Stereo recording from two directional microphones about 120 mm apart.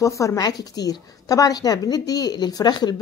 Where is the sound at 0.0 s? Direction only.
25° left (ahead or behind).